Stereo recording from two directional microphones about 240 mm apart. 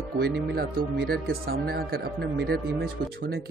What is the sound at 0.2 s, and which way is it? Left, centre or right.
Speech, right.